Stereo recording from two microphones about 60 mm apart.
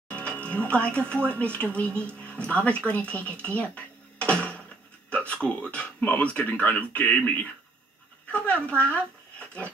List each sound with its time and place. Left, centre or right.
0.1 s music: centre
0.5 s speech: left
4.3 s a sound: left
5.1 s a man's voice: left